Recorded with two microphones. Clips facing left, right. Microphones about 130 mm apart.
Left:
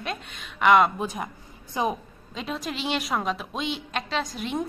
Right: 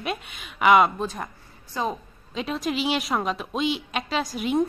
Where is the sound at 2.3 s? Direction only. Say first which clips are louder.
Right 5 dB; centre (ahead or behind).